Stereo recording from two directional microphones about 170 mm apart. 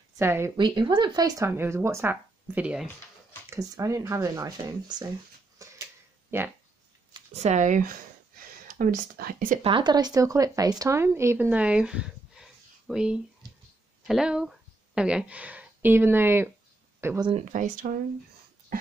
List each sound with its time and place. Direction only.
0.2 s speech: 15° right (ahead or behind)
0.6 s speech: 25° right (ahead or behind); by 2.9 s 5° right (ahead or behind)
3.4 s speech: 20° right (ahead or behind)
5.6 s a sound: 20° right (ahead or behind)
6.3 s speech: 15° right (ahead or behind)
7.2 s speech: 40° right (ahead or behind); by 9.6 s 55° right (ahead or behind)
9.6 s speech: 30° right (ahead or behind)
17.5 s speech: 50° right (ahead or behind)